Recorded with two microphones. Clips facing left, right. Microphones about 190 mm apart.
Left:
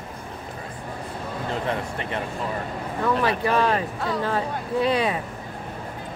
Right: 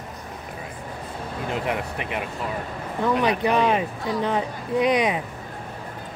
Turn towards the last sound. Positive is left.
turn(degrees=-15)  # may be behind; listen again after turning